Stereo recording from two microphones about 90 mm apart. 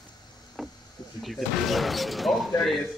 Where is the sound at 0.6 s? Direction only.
Centre (ahead or behind).